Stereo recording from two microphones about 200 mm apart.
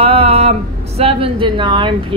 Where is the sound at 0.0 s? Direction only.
30° right (ahead or behind).